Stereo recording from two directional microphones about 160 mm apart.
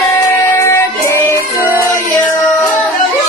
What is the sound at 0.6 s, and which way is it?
Music, 15° left (ahead or behind).